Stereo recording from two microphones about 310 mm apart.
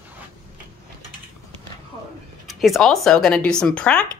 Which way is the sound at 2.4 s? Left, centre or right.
Centre.